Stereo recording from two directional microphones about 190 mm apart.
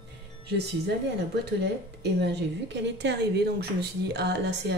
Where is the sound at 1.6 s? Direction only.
60° right (ahead or behind).